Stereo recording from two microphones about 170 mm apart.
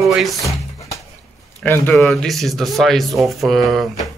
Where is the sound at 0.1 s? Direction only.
Centre (ahead or behind).